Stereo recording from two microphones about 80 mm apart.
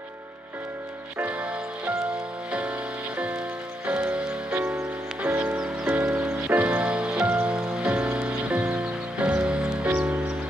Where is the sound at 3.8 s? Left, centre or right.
Centre.